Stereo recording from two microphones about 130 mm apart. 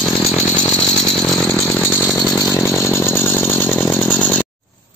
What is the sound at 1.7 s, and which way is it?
Chainsaw, 15° left (ahead or behind).